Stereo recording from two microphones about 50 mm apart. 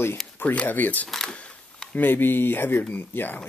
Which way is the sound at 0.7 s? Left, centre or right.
Left.